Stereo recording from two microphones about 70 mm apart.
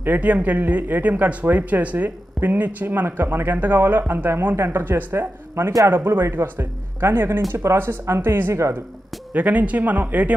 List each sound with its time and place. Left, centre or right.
0.0 s speech: right
9.3 s speech: right